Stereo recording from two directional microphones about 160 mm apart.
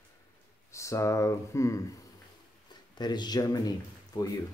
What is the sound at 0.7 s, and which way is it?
Speech, 20° left (ahead or behind).